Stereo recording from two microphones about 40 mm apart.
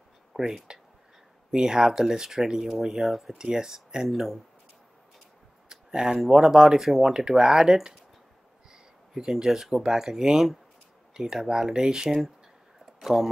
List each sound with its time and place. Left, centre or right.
0.3 s speech: centre
3.3 s speech: centre
5.7 s a sound: centre
6.1 s speech: centre
9.1 s speech: centre